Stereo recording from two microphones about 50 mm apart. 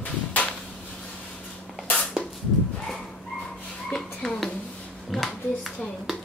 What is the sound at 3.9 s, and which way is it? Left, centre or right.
Speech, centre.